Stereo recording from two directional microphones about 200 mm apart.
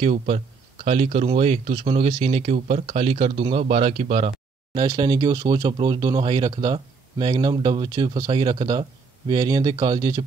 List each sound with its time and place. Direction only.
0.0 s speech: 30° right (ahead or behind)